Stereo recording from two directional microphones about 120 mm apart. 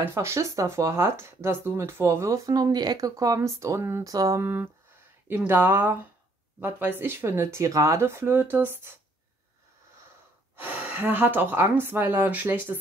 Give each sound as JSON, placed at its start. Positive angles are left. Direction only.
{"t": 0.0, "sound": "speech", "side_deg": -20}
{"t": 10.6, "sound": "speech", "side_deg": -15}